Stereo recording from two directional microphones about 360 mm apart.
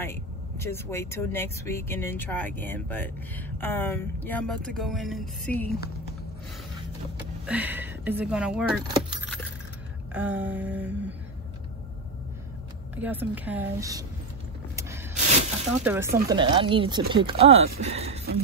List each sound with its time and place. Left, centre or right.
0.0 s speech: centre
7.4 s speech: centre
12.9 s speech: centre
15.8 s speech: centre